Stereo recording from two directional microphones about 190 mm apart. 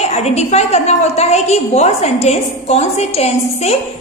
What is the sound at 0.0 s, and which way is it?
A woman's voice, 35° left (ahead or behind).